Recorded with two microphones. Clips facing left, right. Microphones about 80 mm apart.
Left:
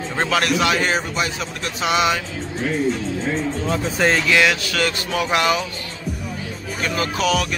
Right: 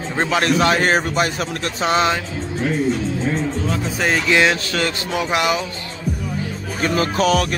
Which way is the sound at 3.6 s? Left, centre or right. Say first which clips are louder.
Left 2 dB; centre.